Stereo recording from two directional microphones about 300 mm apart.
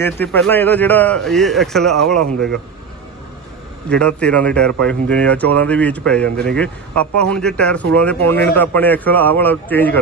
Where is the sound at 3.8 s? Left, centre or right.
Centre.